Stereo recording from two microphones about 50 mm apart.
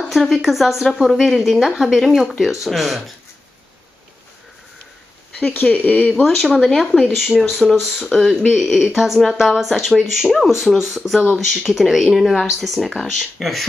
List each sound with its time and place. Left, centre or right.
0.1 s speech: centre
5.5 s speech: left
6.2 s speech: centre
7.2 s a woman's voice: centre